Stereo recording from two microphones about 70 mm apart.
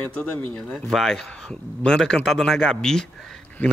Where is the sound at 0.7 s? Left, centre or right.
Centre.